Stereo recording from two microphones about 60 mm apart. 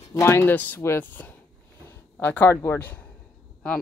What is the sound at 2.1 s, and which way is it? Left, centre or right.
Speech, left.